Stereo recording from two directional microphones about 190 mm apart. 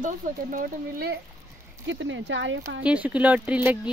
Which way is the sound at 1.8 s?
75° right (ahead or behind).